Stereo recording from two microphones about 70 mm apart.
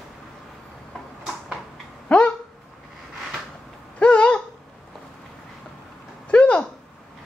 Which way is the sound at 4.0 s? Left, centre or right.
Centre.